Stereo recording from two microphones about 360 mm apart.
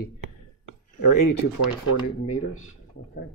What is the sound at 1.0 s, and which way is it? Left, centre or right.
Speech, left.